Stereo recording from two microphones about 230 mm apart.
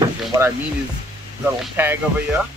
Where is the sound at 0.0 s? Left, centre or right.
Centre.